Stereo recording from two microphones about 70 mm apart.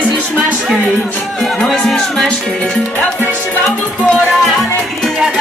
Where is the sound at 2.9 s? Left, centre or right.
Left.